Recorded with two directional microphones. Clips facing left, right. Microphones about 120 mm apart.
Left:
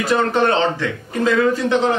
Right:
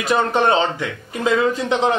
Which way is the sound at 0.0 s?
20° right (ahead or behind).